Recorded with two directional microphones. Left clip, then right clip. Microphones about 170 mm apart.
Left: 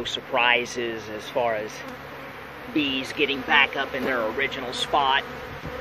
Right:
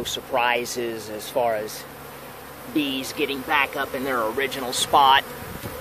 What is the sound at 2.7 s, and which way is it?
Speech, 20° right (ahead or behind).